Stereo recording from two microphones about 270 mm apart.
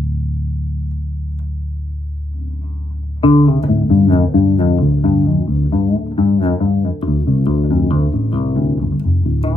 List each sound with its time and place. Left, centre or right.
3.2 s music: centre